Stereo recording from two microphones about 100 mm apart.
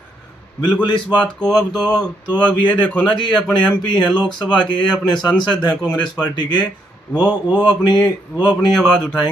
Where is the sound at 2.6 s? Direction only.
55° left (ahead or behind).